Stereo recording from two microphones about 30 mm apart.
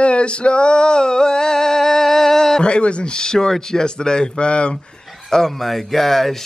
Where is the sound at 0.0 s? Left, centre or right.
Left; by 2.6 s centre.